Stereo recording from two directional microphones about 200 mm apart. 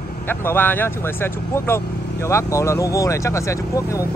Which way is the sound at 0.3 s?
10° left (ahead or behind).